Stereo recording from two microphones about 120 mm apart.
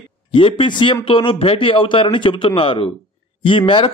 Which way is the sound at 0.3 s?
45° left (ahead or behind).